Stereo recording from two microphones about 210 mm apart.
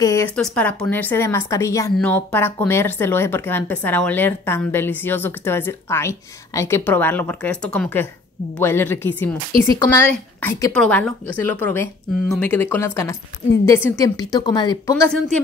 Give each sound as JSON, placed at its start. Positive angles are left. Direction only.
{"t": 0.0, "sound": "speech", "side_deg": 15}